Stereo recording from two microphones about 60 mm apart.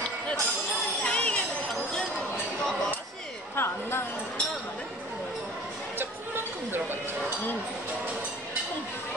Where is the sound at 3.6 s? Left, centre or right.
Left.